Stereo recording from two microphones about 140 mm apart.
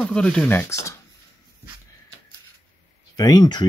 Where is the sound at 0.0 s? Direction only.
5° left (ahead or behind).